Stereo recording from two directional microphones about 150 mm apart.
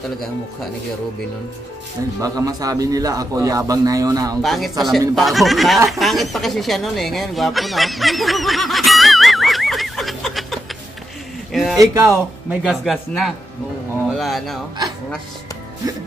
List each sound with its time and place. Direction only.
2.1 s a man's voice: 25° right (ahead or behind)
4.4 s speech: centre (ahead or behind)
11.8 s a man's voice: 20° right (ahead or behind)
12.4 s speech: centre (ahead or behind)